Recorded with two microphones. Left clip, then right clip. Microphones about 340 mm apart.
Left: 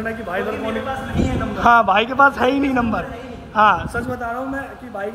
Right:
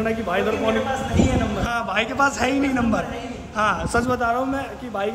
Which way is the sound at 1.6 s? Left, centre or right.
Centre.